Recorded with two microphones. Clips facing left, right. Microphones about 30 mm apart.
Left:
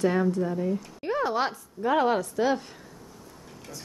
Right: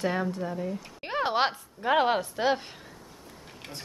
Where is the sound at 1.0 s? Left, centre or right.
Right.